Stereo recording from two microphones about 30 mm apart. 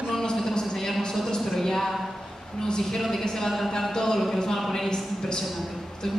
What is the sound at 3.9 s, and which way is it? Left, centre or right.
A man's voice, centre.